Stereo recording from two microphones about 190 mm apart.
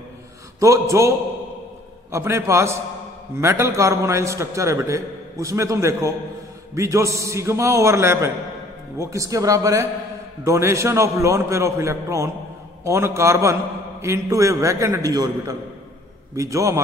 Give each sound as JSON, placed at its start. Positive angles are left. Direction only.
{"t": 0.6, "sound": "a man's voice", "side_deg": -15}